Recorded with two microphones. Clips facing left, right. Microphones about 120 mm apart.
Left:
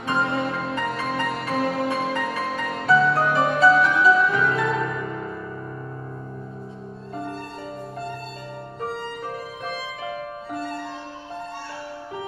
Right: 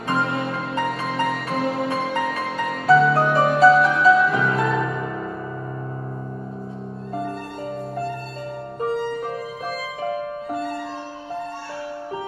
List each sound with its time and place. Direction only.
0.1 s music: centre (ahead or behind)